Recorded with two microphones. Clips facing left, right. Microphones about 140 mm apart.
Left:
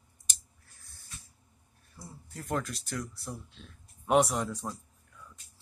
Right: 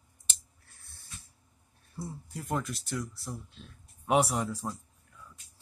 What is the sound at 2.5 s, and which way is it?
Speech, centre (ahead or behind).